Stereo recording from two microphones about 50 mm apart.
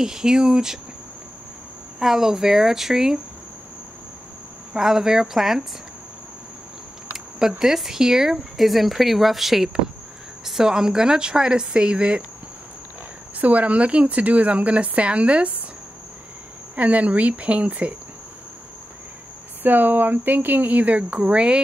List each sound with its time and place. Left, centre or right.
0.0 s speech: centre
2.0 s speech: centre
4.7 s speech: centre
7.3 s speech: centre
13.4 s speech: right
16.7 s speech: right
19.6 s speech: right